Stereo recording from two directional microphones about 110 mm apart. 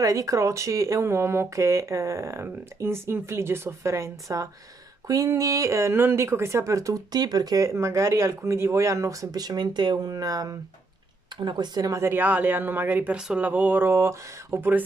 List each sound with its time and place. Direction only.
0.0 s speech: 30° right (ahead or behind)